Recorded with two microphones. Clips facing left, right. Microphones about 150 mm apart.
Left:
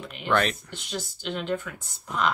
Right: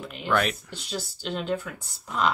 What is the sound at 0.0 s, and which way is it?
Speech, centre (ahead or behind).